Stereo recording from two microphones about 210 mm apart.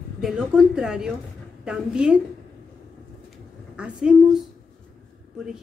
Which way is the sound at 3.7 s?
5° right (ahead or behind).